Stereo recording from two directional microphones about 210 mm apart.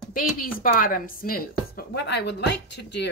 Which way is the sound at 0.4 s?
40° left (ahead or behind).